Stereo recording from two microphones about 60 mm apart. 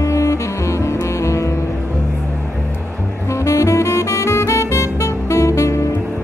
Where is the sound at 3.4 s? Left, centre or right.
Left.